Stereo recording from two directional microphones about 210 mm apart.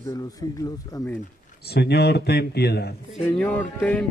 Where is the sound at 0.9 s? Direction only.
15° left (ahead or behind).